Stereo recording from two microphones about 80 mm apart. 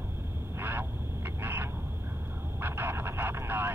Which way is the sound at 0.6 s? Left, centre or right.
Right.